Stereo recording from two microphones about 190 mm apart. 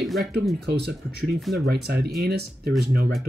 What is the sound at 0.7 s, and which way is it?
Speech, 60° right (ahead or behind).